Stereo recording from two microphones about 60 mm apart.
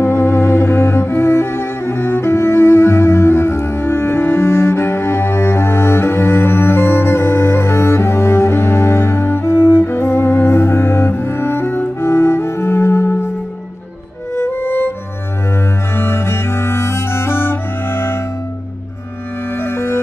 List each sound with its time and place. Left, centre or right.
0.0 s cello: left
14.3 s music: left
15.9 s music: left
19.5 s music: left